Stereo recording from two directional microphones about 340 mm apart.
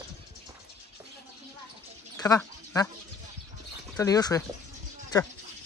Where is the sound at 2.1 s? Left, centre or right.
Centre.